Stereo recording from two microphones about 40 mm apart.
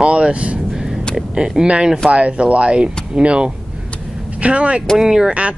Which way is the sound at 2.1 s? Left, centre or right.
Right.